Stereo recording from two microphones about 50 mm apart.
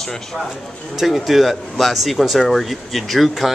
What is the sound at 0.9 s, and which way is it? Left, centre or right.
A man's voice, centre.